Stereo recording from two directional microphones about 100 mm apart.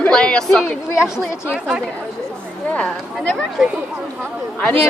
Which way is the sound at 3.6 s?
5° right (ahead or behind).